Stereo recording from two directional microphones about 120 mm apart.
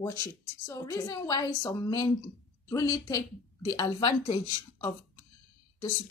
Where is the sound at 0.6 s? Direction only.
25° left (ahead or behind).